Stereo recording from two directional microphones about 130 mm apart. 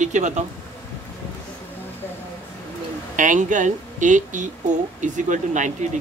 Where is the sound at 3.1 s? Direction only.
75° right (ahead or behind).